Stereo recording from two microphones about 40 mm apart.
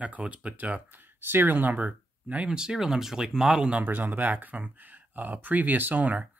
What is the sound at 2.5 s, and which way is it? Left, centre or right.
Speech, centre.